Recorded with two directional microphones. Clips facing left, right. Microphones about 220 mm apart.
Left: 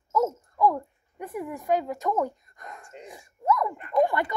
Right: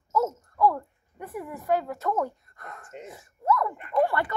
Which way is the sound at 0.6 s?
15° left (ahead or behind).